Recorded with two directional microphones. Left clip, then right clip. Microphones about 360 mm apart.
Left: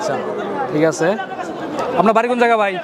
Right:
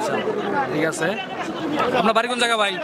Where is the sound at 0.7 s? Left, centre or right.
Centre.